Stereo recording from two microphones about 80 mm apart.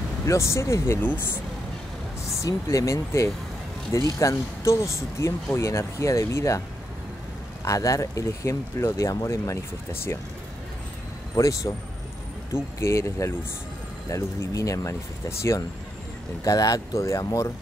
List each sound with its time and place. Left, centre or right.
0.3 s speech: left
1.0 s speech: left
2.4 s speech: left
7.6 s speech: left
11.3 s speech: left
16.4 s speech: left